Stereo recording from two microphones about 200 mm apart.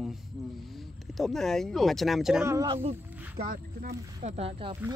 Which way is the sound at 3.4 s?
45° right (ahead or behind).